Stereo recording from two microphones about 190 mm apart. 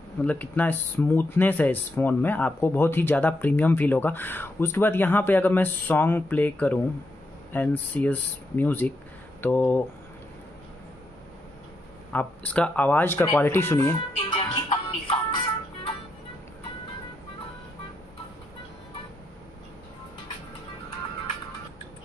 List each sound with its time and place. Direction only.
0.2 s speech: 10° left (ahead or behind)
12.1 s speech: 10° left (ahead or behind)
14.1 s music: 30° left (ahead or behind)